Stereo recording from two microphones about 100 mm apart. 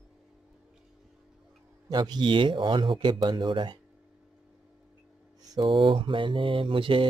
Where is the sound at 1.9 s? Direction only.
45° right (ahead or behind).